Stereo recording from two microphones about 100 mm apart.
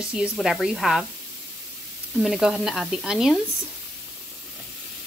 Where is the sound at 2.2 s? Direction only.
5° right (ahead or behind).